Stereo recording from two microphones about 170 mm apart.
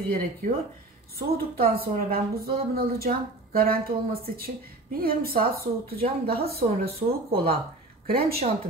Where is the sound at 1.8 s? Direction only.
65° right (ahead or behind).